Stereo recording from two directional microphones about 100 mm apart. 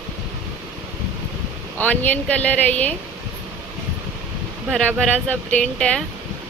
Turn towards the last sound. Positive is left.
turn(degrees=10)  # may be behind; listen again after turning